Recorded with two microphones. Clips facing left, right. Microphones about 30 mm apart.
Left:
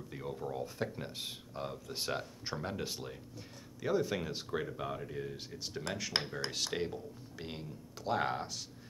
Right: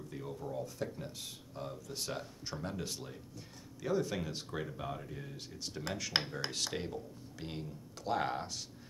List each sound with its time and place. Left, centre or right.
0.1 s speech: centre
6.1 s speech: centre
6.5 s speech: centre